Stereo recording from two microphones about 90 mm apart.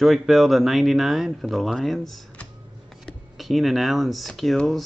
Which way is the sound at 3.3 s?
Centre (ahead or behind).